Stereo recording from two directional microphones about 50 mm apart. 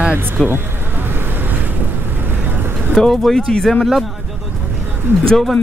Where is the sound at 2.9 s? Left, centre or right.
Centre.